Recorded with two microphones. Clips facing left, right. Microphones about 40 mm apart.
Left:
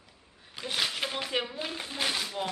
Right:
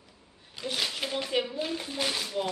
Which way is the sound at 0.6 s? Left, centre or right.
Centre.